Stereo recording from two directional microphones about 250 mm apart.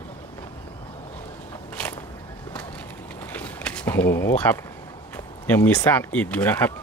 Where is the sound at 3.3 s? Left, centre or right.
Centre.